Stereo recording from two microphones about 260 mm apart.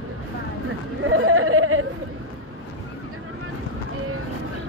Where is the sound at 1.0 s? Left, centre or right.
Right.